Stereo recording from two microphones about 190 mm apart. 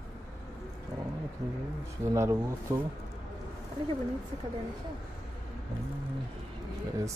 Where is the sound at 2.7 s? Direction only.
15° right (ahead or behind).